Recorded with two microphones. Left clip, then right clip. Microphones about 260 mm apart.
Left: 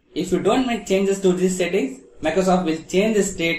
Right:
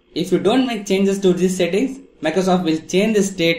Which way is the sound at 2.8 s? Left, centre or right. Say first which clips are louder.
Right 1 dB; right.